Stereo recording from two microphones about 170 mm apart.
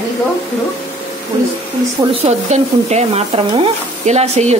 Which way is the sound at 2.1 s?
40° right (ahead or behind).